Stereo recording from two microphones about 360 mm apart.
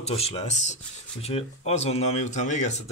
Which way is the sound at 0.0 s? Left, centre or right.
Centre.